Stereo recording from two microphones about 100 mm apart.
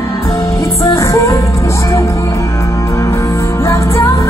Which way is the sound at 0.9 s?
30° left (ahead or behind).